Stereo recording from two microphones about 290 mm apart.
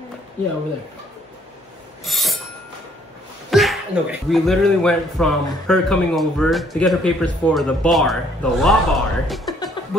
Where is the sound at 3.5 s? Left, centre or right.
Centre.